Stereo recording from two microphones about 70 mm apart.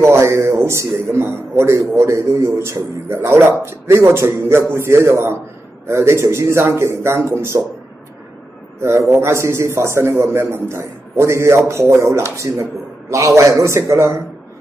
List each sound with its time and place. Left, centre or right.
0.0 s a man's voice: right
8.7 s a man's voice: right